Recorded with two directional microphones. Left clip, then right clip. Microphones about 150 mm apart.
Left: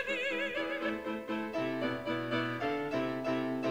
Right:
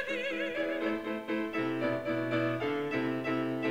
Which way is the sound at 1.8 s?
10° right (ahead or behind).